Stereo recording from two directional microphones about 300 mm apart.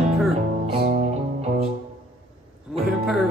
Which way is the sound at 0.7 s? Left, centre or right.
Right.